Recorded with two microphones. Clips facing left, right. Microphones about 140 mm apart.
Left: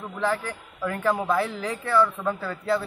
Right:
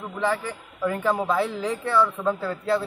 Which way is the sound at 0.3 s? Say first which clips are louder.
Right 1 dB; 5° right (ahead or behind).